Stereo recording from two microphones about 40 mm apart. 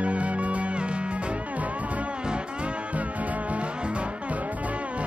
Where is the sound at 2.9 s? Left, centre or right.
Right.